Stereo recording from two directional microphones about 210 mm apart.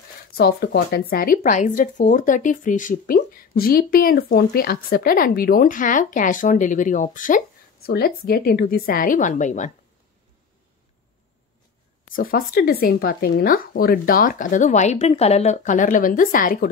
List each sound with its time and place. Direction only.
0.4 s speech: 45° left (ahead or behind)
12.1 s speech: 45° left (ahead or behind)